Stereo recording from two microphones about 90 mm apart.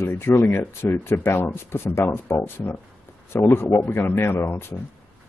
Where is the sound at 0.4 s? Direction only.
25° left (ahead or behind).